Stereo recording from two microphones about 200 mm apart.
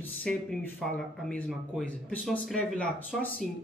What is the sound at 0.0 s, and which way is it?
Speech, 5° left (ahead or behind).